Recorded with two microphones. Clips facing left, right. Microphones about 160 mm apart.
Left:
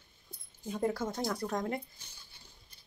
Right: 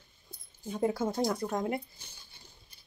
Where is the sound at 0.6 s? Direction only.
5° right (ahead or behind).